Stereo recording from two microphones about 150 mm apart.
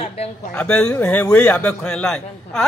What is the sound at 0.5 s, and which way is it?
A man's voice, 10° left (ahead or behind).